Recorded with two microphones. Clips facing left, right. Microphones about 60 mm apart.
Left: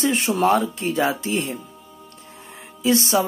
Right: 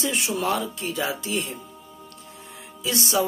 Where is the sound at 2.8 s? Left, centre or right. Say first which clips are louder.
Left 5 dB; left.